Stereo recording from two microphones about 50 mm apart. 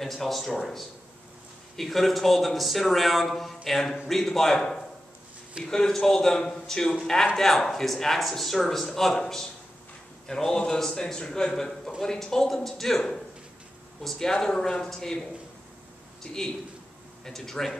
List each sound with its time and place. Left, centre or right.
0.0 s a man's voice: centre
16.3 s a man's voice: centre